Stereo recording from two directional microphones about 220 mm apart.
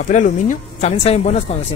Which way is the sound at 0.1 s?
35° left (ahead or behind).